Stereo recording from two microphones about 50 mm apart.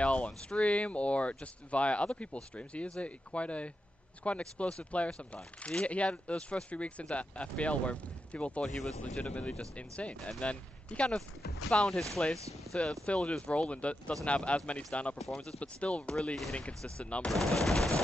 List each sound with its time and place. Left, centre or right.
0.0 s speech: left
8.6 s speech: centre; by 11.1 s left
11.7 s speech: centre
12.2 s speech: left
15.1 s speech: centre
15.6 s speech: left
17.3 s speech: centre